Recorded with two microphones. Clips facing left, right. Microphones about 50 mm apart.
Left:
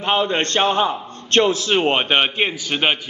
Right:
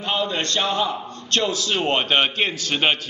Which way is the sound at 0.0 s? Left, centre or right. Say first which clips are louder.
Left 5 dB; left.